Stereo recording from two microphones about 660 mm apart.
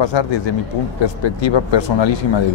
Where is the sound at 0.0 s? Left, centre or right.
Left.